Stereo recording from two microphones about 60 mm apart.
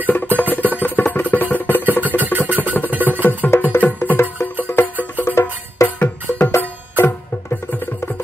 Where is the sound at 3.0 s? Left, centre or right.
Left.